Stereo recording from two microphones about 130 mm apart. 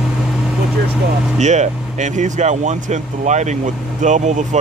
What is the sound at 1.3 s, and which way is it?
Speech, 65° right (ahead or behind).